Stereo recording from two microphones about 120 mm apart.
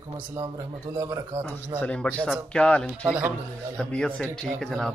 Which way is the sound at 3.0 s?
10° right (ahead or behind).